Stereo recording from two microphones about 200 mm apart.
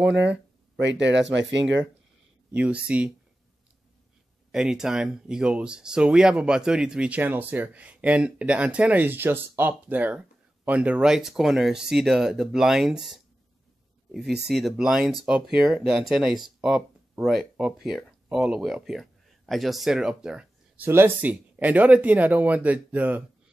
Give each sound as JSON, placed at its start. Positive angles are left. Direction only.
{"t": 0.7, "sound": "speech", "side_deg": -60}
{"t": 2.5, "sound": "speech", "side_deg": -5}
{"t": 4.5, "sound": "speech", "side_deg": -5}
{"t": 14.1, "sound": "speech", "side_deg": 0}